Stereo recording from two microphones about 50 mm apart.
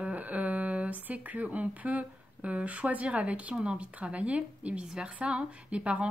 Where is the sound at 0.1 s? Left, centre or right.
Right.